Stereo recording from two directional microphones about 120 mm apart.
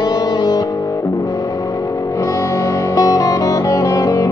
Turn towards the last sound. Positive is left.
turn(degrees=30)  # may be behind; listen again after turning